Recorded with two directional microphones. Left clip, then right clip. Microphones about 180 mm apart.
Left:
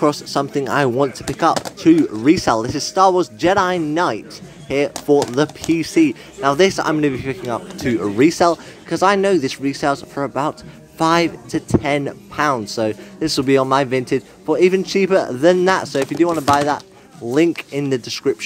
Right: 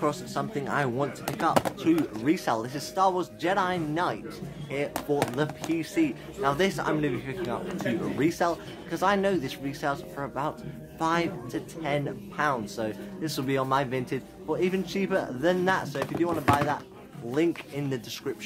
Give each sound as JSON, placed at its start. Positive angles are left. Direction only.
{"t": 0.0, "sound": "speech", "side_deg": 45}